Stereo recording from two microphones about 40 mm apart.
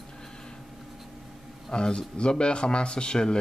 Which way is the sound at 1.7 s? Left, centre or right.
Left.